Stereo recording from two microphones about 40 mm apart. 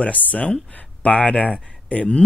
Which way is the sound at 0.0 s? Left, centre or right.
Left.